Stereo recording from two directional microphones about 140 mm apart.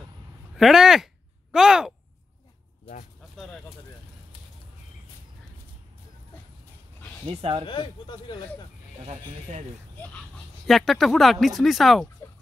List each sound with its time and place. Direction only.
0.6 s speech: centre (ahead or behind)
3.3 s bird: 5° left (ahead or behind)
7.2 s speech: 40° right (ahead or behind)
7.6 s speech: 35° left (ahead or behind)
9.0 s speech: 50° right (ahead or behind)
10.7 s speech: centre (ahead or behind)